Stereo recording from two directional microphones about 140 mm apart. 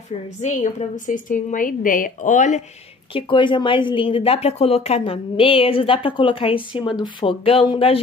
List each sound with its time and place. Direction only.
0.4 s a woman's voice: 60° left (ahead or behind)
3.1 s speech: 40° left (ahead or behind)